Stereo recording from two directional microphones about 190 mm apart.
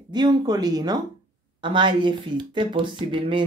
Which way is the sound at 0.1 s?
20° right (ahead or behind).